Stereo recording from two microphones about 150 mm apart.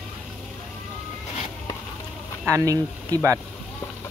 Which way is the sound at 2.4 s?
20° right (ahead or behind).